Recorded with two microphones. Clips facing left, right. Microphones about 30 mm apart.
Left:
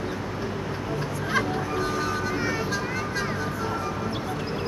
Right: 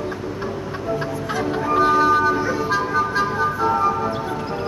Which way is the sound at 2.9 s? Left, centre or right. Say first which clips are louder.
Right 8 dB; centre.